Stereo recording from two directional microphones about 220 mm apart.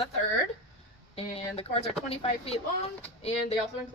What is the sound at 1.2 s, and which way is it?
A woman's voice, 25° left (ahead or behind).